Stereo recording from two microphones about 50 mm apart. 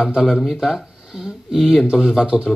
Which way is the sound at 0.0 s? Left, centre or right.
Centre.